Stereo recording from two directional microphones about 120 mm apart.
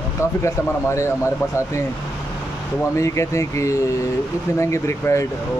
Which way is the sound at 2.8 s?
25° left (ahead or behind).